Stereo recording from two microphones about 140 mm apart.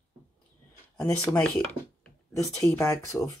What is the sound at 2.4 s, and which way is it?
Speech, 20° left (ahead or behind).